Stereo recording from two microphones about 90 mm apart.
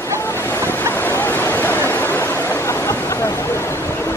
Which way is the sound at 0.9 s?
25° left (ahead or behind).